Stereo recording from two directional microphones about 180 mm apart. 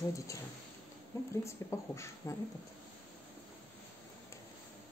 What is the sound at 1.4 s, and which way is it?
Speech, 15° left (ahead or behind).